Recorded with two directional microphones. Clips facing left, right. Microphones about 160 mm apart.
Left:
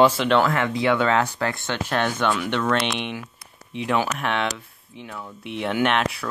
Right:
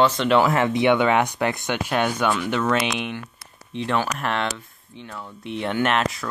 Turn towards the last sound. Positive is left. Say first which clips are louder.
# even
turn(degrees=0)  # may be behind; listen again after turning